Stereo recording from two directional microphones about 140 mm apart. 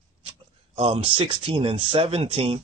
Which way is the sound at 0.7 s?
40° right (ahead or behind).